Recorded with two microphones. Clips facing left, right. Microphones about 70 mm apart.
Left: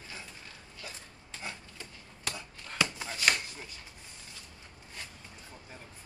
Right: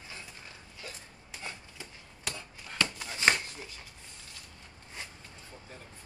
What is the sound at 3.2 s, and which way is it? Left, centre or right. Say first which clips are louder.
Chopping: right 3 dB; right.